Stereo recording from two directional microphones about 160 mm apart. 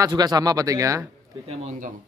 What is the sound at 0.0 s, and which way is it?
Speech, 25° right (ahead or behind).